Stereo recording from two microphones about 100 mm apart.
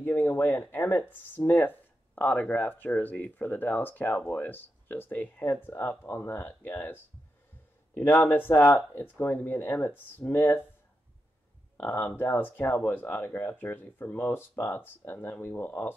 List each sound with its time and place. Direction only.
0.0 s speech: 20° left (ahead or behind)
11.7 s speech: 20° left (ahead or behind)